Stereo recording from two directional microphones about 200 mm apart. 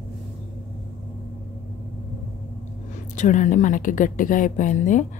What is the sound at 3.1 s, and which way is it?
A woman's voice, 40° left (ahead or behind).